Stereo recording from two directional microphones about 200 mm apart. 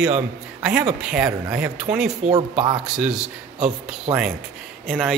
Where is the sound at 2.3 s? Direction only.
30° right (ahead or behind).